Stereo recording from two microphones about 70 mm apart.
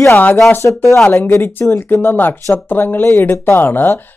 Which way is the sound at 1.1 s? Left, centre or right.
Left.